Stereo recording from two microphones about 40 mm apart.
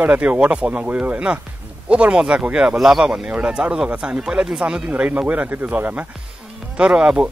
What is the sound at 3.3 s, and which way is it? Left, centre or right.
Speech, right.